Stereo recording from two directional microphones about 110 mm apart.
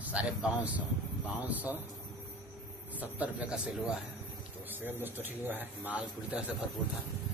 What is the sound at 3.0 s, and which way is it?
Speech, 15° right (ahead or behind).